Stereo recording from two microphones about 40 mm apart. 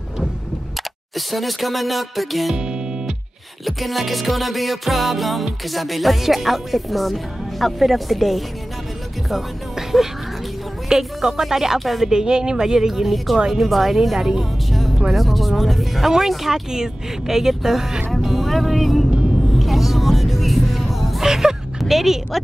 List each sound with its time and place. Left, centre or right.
1.1 s music: centre
3.6 s music: centre
10.9 s speech: centre
11.8 s music: centre
12.1 s speech: right
15.1 s music: centre
16.1 s speech: centre
19.5 s music: centre
21.3 s a sound: centre
21.7 s a woman's voice: centre